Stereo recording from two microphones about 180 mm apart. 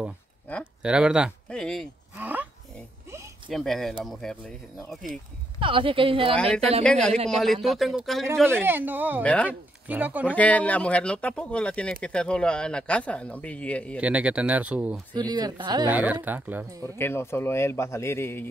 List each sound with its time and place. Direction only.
0.5 s speech: 10° left (ahead or behind)
0.8 s speech: 5° right (ahead or behind)
2.1 s a sound: 10° right (ahead or behind)
3.4 s speech: centre (ahead or behind)
5.6 s a woman's voice: 30° right (ahead or behind)
6.3 s speech: 5° left (ahead or behind)
8.5 s speech: 10° right (ahead or behind)
9.2 s speech: 5° left (ahead or behind)
9.5 s speech: 10° right (ahead or behind)
10.2 s speech: 10° left (ahead or behind)
13.9 s speech: 5° right (ahead or behind)
15.1 s a woman's voice: 20° right (ahead or behind)
15.9 s speech: 10° right (ahead or behind)
16.8 s speech: 15° left (ahead or behind)